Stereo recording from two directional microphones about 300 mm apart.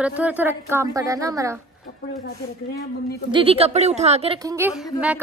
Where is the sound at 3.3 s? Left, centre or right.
Centre.